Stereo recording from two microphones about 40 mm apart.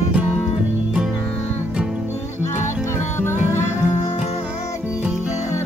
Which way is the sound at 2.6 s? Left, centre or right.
Left.